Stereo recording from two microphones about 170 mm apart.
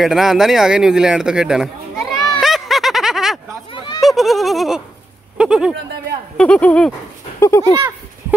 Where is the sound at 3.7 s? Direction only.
30° left (ahead or behind).